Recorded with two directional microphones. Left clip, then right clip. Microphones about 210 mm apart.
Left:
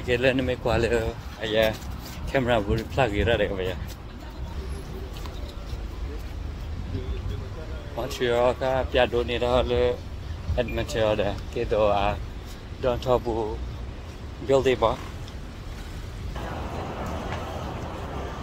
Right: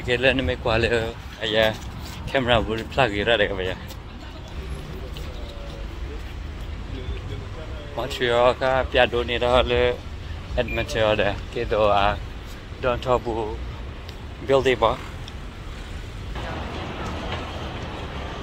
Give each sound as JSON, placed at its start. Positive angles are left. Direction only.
{"t": 0.0, "sound": "speech", "side_deg": 10}
{"t": 8.0, "sound": "speech", "side_deg": 5}
{"t": 14.5, "sound": "speech", "side_deg": 5}